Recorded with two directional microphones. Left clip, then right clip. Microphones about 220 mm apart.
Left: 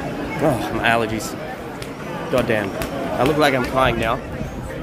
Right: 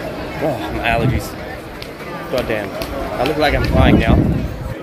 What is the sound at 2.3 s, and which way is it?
Speech, 15° left (ahead or behind).